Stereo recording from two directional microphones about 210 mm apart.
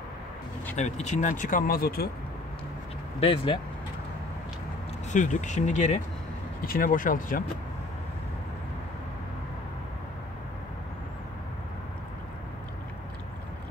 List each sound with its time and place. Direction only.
0.7 s speech: 35° left (ahead or behind)
3.2 s speech: 25° left (ahead or behind)
5.1 s speech: 35° left (ahead or behind)